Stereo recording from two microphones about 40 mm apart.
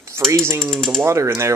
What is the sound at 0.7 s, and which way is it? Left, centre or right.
Speech, centre.